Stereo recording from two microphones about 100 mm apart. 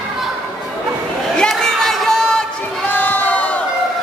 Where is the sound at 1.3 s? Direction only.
5° left (ahead or behind).